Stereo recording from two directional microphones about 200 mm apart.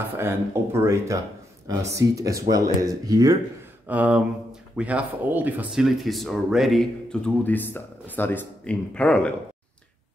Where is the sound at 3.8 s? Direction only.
5° right (ahead or behind).